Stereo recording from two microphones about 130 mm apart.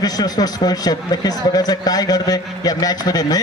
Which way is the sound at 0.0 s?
30° left (ahead or behind).